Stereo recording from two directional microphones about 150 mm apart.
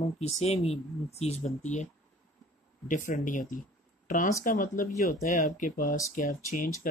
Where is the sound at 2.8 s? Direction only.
60° left (ahead or behind).